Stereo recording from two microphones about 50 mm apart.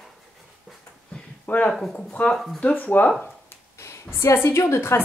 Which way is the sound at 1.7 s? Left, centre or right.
Centre.